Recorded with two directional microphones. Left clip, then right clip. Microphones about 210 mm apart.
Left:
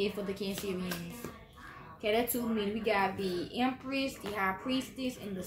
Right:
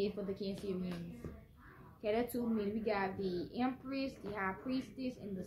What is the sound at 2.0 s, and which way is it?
A woman's voice, 15° left (ahead or behind).